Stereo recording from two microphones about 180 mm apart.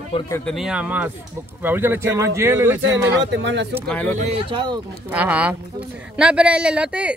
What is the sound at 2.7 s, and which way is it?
Speech, 90° right.